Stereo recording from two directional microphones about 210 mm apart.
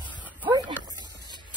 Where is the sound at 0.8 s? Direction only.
20° right (ahead or behind).